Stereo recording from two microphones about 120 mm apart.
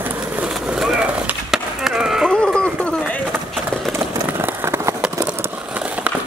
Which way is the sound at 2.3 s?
5° left (ahead or behind).